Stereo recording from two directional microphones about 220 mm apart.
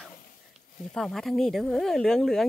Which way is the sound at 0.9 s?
Centre (ahead or behind).